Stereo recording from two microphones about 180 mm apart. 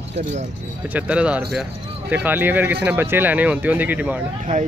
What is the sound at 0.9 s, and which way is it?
Speech, 5° right (ahead or behind).